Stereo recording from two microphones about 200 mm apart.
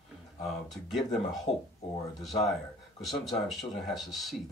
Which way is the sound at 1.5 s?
25° left (ahead or behind).